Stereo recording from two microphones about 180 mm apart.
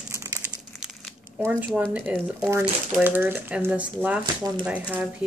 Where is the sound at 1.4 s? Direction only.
10° right (ahead or behind).